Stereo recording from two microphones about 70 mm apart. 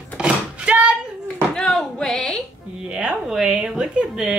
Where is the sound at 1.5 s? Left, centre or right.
Centre.